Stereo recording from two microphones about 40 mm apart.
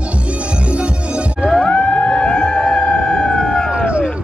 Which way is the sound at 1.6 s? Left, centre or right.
Left.